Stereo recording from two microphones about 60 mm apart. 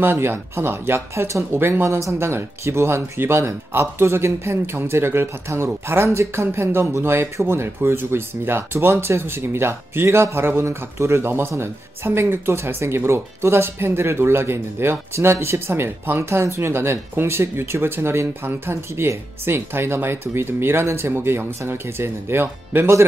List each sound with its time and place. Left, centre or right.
0.0 s speech: right